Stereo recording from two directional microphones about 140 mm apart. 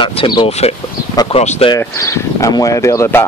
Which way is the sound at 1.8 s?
20° left (ahead or behind).